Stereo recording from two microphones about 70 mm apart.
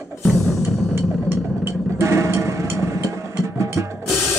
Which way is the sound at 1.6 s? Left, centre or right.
Right.